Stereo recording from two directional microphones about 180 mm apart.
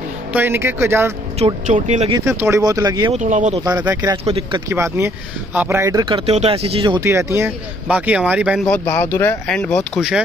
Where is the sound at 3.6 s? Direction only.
20° right (ahead or behind).